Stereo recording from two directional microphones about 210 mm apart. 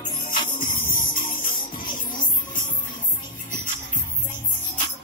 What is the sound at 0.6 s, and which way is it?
Music, 40° left (ahead or behind).